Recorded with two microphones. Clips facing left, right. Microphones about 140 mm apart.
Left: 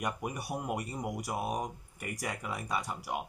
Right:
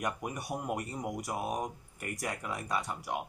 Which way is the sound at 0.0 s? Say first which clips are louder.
Even; centre (ahead or behind).